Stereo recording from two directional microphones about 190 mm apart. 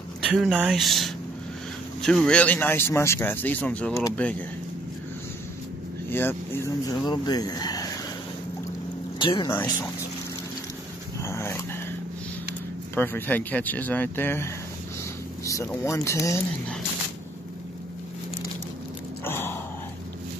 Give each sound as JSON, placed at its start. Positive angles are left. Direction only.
{"t": 0.2, "sound": "speech", "side_deg": -5}
{"t": 6.0, "sound": "speech", "side_deg": 10}
{"t": 9.2, "sound": "speech", "side_deg": 25}
{"t": 9.5, "sound": "speech", "side_deg": 15}
{"t": 11.2, "sound": "dog", "side_deg": 15}
{"t": 12.9, "sound": "speech", "side_deg": 10}
{"t": 15.4, "sound": "vehicle", "side_deg": 15}
{"t": 15.8, "sound": "speech", "side_deg": 15}
{"t": 19.2, "sound": "gasp", "side_deg": 10}